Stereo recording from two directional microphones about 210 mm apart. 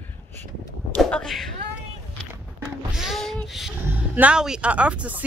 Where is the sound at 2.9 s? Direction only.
Centre (ahead or behind).